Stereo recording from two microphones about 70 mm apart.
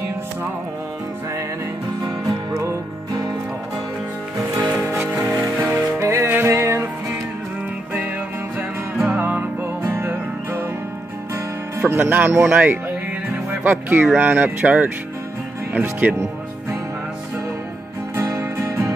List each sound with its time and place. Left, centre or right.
2.2 s music: right
5.0 s music: right
8.5 s music: right
12.4 s speech: right
18.6 s music: right